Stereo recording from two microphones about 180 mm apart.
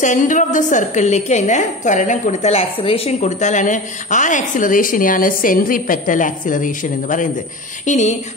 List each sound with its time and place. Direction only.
0.0 s a woman's voice: 45° left (ahead or behind)